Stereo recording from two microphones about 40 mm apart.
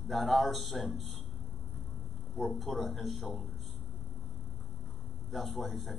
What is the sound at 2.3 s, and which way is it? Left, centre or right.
A man's voice, centre.